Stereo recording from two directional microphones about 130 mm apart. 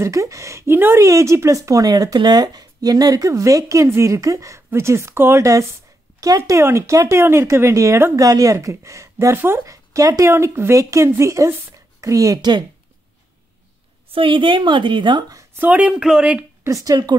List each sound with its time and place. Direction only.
0.0 s a woman's voice: 25° right (ahead or behind)
14.1 s a woman's voice: 40° right (ahead or behind)
15.5 s speech: 15° right (ahead or behind)
16.6 s a woman's voice: 25° right (ahead or behind)